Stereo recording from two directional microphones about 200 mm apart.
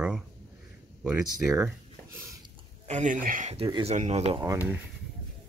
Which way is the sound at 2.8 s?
35° right (ahead or behind).